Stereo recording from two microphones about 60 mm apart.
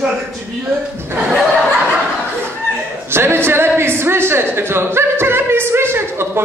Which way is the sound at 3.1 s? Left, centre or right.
Right.